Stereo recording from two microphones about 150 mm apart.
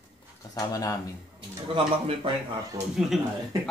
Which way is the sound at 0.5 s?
25° left (ahead or behind).